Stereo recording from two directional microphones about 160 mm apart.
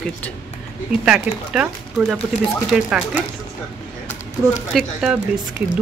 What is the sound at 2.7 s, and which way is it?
Speech, 5° right (ahead or behind).